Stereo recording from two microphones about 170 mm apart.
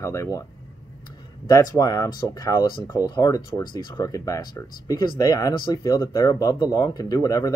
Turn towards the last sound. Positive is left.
turn(degrees=20)  # may be behind; listen again after turning